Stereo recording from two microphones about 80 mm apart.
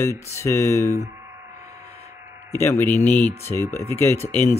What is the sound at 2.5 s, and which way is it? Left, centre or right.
Speech, left.